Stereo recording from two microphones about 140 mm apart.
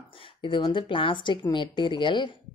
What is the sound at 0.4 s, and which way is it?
Speech, 35° left (ahead or behind).